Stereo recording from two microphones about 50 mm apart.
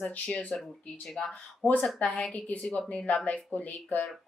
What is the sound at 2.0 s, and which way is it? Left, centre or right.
Speech, centre.